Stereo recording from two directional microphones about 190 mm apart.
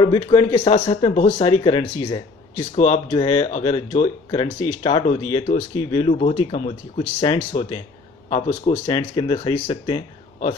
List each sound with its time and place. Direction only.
0.0 s speech: 25° left (ahead or behind)
2.7 s speech: 35° left (ahead or behind)